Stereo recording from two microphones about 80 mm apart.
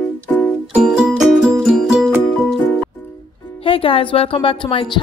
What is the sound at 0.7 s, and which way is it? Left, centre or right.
Music, centre.